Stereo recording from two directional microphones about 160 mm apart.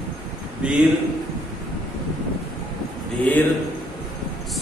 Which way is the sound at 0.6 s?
5° right (ahead or behind).